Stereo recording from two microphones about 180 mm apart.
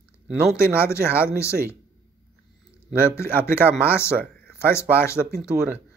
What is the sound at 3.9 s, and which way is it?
Speech, 15° left (ahead or behind).